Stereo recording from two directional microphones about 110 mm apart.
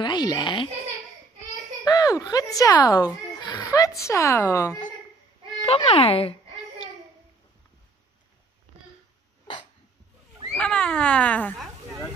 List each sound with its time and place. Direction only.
0.0 s speech: 40° left (ahead or behind)
1.9 s a child's voice: 35° left (ahead or behind)
4.0 s speech: 25° left (ahead or behind)
5.7 s a child's voice: 65° left (ahead or behind)
10.5 s a sound: 10° left (ahead or behind)